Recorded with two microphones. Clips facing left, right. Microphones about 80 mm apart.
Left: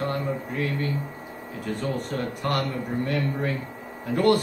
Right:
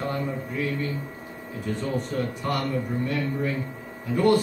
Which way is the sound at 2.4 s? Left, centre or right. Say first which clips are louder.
Left 3 dB; left.